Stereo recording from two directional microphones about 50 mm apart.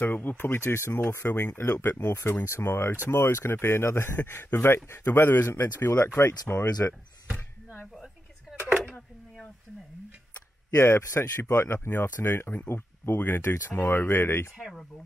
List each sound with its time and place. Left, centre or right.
0.0 s speech: left
2.4 s speech: left
4.2 s speech: left
5.0 s speech: left
10.8 s a man's voice: left
11.1 s speech: left
11.8 s speech: left